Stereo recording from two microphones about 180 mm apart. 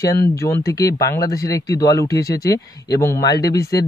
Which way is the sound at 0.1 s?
15° left (ahead or behind).